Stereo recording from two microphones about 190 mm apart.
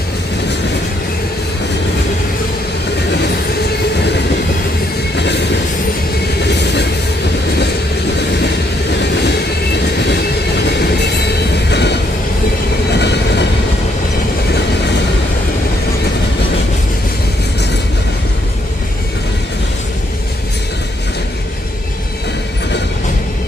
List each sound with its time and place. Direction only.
5.1 s train: 65° left (ahead or behind)
6.4 s train: 65° left (ahead or behind)
11.7 s train: 65° left (ahead or behind)